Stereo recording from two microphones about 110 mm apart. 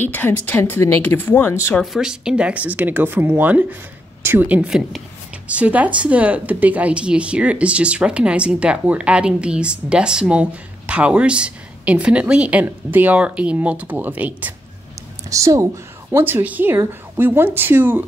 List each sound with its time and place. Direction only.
0.0 s speech: 15° left (ahead or behind)
1.8 s speech: 5° right (ahead or behind)
15.2 s a woman's voice: 30° right (ahead or behind)